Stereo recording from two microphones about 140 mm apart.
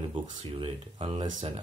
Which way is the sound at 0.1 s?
35° right (ahead or behind).